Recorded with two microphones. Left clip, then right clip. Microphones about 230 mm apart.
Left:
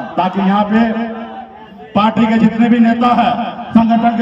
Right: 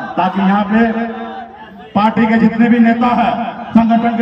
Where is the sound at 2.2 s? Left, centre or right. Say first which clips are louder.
Right 1 dB; left.